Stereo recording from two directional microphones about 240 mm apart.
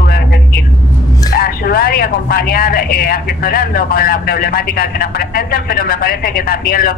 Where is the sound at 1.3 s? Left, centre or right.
Left.